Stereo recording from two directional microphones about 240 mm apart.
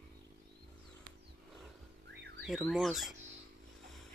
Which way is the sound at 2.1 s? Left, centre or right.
Right.